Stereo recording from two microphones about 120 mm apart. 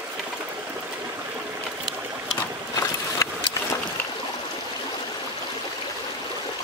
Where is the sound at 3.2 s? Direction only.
25° left (ahead or behind).